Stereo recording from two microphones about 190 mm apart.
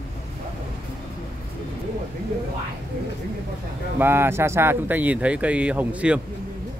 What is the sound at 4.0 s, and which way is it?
Speech, 10° right (ahead or behind).